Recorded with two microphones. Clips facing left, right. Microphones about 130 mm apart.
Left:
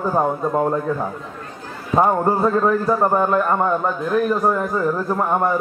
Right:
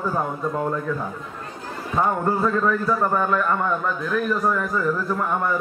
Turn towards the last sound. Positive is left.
turn(degrees=35)  # may be behind; listen again after turning